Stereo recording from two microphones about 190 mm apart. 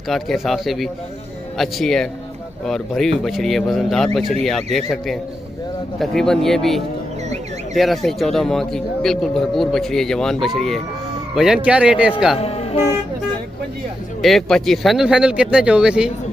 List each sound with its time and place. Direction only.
0.1 s a man's voice: centre (ahead or behind)
12.4 s speech: 35° left (ahead or behind)
14.2 s a man's voice: centre (ahead or behind)